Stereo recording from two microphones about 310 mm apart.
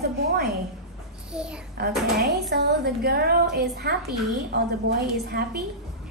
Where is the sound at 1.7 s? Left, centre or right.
Right.